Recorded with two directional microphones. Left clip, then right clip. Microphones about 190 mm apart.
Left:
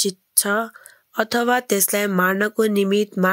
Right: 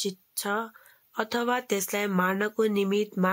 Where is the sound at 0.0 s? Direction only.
25° left (ahead or behind).